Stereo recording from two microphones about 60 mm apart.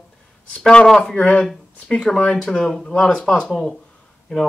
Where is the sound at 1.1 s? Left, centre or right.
Centre.